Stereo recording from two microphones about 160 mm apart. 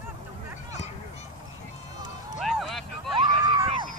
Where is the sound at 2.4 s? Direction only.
Centre (ahead or behind).